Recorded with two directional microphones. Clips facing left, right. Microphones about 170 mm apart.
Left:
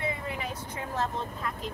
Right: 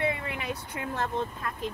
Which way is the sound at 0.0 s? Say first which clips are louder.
Right 3 dB; 70° right (ahead or behind).